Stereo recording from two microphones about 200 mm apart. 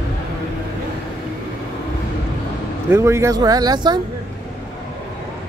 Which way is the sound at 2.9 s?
15° right (ahead or behind).